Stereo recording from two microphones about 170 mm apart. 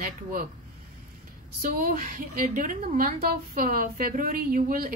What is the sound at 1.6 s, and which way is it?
A woman's voice, 55° right (ahead or behind).